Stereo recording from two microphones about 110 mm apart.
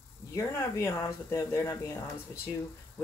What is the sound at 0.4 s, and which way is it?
Speech, 25° left (ahead or behind).